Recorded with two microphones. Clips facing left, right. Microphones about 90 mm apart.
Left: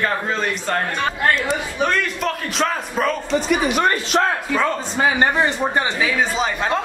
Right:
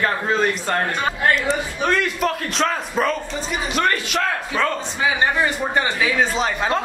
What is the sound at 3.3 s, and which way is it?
Speech, 70° left (ahead or behind).